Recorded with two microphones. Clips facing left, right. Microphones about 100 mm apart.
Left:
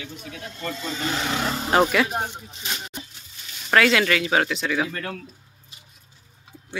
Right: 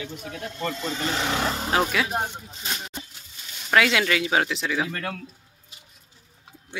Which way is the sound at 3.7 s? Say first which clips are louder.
Left 2 dB; 10° right (ahead or behind).